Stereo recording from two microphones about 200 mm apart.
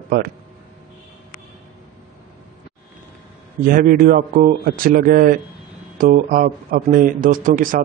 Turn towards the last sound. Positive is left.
turn(degrees=-45)  # may be behind; listen again after turning